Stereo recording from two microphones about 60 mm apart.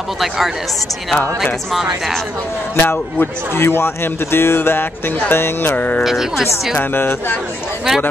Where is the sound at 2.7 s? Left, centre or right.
Left.